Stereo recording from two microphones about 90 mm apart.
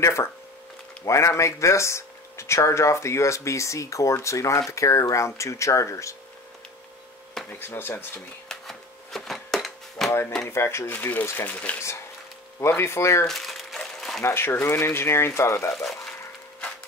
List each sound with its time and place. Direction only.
0.0 s speech: 35° left (ahead or behind)
7.5 s speech: 25° left (ahead or behind)
8.5 s a sound: 5° left (ahead or behind)
10.5 s speech: 30° left (ahead or behind)
12.5 s speech: 30° left (ahead or behind)
13.3 s crumpling: centre (ahead or behind)
14.2 s speech: 25° left (ahead or behind)
15.7 s speech: 5° left (ahead or behind)